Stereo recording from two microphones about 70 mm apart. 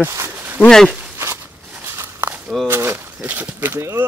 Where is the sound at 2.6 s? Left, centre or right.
Right.